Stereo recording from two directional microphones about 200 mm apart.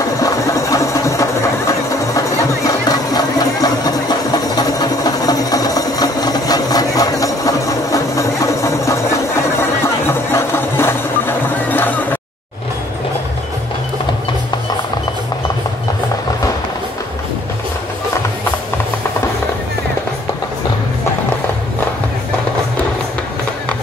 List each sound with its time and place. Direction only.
0.2 s engine: 15° left (ahead or behind)
1.7 s a sound: 15° left (ahead or behind)
9.6 s music: 10° left (ahead or behind)